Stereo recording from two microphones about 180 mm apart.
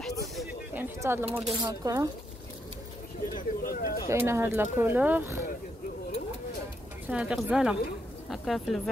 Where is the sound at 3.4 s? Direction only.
55° left (ahead or behind).